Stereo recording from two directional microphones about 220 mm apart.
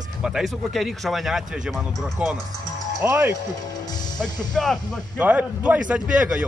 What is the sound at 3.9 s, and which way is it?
Music, 20° left (ahead or behind).